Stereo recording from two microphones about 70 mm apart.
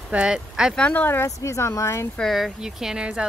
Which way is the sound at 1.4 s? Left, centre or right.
Left.